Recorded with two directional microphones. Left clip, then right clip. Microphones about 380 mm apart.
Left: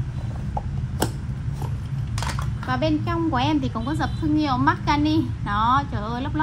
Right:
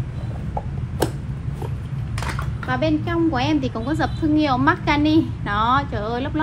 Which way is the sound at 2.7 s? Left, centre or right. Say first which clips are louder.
Right 2 dB; left.